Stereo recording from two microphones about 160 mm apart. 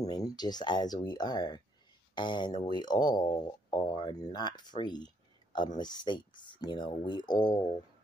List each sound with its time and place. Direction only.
0.0 s speech: 25° left (ahead or behind)